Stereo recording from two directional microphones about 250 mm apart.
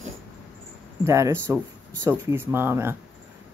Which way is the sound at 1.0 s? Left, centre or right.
Centre.